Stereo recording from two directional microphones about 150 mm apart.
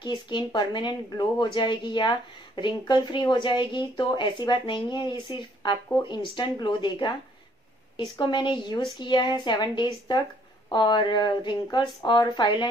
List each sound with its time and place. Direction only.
0.0 s speech: 30° left (ahead or behind)